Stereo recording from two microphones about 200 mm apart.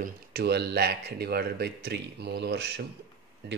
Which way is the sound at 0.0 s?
50° right (ahead or behind).